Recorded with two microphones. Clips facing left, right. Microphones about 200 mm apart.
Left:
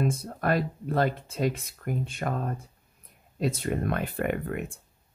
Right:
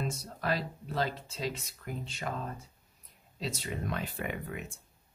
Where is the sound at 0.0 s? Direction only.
55° left (ahead or behind).